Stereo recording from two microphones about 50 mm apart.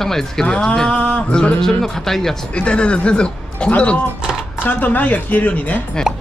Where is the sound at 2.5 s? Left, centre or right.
Left.